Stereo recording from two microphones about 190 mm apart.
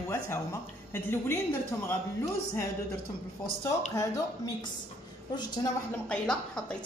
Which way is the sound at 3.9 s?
15° left (ahead or behind).